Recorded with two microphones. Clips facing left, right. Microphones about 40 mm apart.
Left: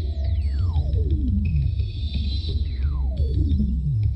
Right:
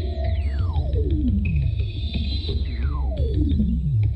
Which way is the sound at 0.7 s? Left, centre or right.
Right.